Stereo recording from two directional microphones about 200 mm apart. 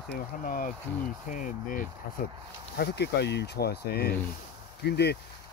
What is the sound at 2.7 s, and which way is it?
Speech, 55° left (ahead or behind).